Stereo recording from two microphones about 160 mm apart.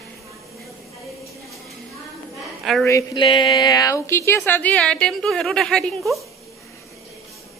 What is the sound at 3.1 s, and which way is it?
A woman's voice, 30° left (ahead or behind).